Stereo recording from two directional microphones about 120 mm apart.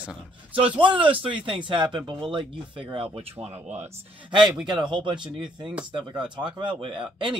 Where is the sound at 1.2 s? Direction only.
45° right (ahead or behind).